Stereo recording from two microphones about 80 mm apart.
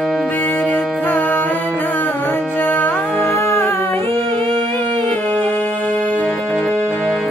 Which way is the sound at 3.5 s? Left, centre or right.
Left.